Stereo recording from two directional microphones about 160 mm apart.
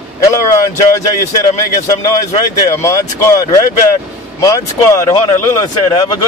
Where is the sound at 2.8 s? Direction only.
20° left (ahead or behind).